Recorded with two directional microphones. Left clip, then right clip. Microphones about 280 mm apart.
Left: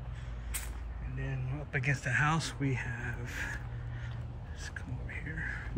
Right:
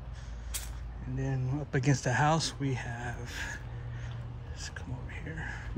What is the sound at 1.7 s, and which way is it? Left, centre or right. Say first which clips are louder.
Speech: right 1 dB; centre.